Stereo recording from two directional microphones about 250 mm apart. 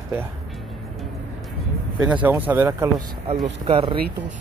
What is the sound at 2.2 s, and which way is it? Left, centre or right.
Speech, centre.